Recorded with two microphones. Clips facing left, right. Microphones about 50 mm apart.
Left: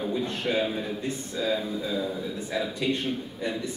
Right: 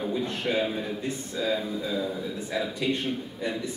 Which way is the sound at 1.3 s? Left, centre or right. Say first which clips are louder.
Even; right.